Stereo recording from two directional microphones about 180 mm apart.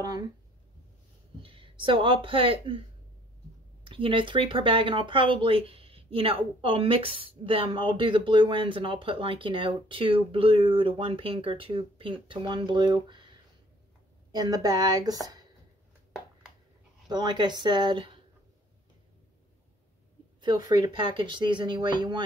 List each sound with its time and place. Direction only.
1.4 s speech: 30° right (ahead or behind)
3.8 s speech: 30° right (ahead or behind)
14.3 s speech: 20° right (ahead or behind)
17.1 s speech: 25° right (ahead or behind)
20.3 s speech: 25° right (ahead or behind)